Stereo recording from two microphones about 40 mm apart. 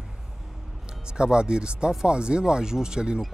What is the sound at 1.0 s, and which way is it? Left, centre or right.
Speech, right.